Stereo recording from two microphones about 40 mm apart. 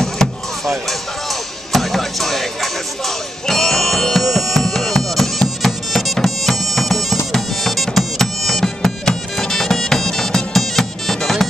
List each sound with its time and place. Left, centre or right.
0.0 s a sound: centre
1.7 s music: centre
4.2 s music: centre